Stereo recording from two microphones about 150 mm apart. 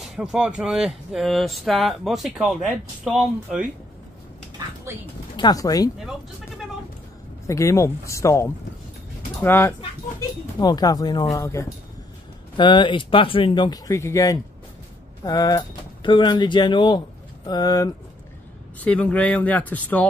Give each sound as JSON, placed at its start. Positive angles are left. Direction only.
{"t": 0.0, "sound": "speech", "side_deg": 0}
{"t": 5.3, "sound": "speech", "side_deg": 25}
{"t": 7.4, "sound": "speech", "side_deg": 20}
{"t": 10.6, "sound": "speech", "side_deg": 25}
{"t": 12.5, "sound": "speech", "side_deg": 30}
{"t": 18.8, "sound": "speech", "side_deg": 10}